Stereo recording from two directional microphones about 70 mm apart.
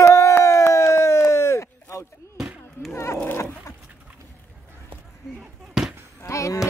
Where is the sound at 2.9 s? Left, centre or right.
Left.